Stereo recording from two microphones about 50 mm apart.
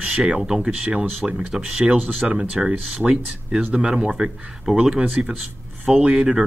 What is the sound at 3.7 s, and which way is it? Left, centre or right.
Speech, centre.